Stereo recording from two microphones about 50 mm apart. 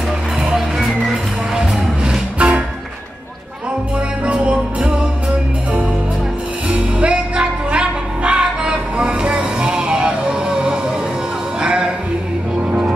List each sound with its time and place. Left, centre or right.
0.7 s music: centre
2.3 s music: right
4.3 s music: right
6.7 s music: right